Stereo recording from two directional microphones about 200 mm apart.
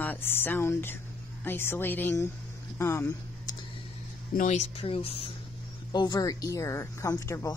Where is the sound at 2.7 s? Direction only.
15° left (ahead or behind).